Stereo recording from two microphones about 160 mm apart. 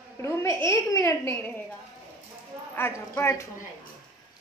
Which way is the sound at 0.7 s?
20° left (ahead or behind).